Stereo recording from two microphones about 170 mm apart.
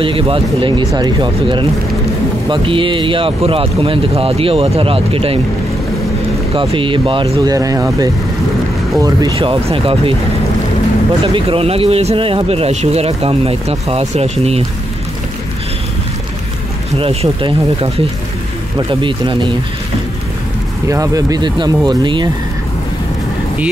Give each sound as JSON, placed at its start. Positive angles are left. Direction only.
{"t": 0.0, "sound": "speech", "side_deg": -30}
{"t": 6.5, "sound": "speech", "side_deg": -30}
{"t": 7.3, "sound": "speech", "side_deg": -20}
{"t": 11.3, "sound": "speech", "side_deg": -35}
{"t": 17.0, "sound": "speech", "side_deg": -35}
{"t": 20.9, "sound": "speech", "side_deg": -20}